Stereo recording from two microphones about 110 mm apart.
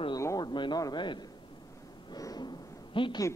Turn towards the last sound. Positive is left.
turn(degrees=45)  # may be behind; listen again after turning